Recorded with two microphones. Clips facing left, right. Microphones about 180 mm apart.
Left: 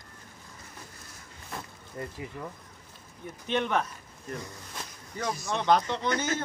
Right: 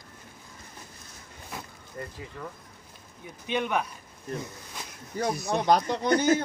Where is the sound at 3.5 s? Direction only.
5° right (ahead or behind).